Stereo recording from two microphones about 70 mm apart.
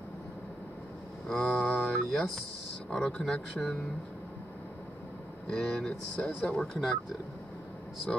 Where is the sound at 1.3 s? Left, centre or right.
Centre.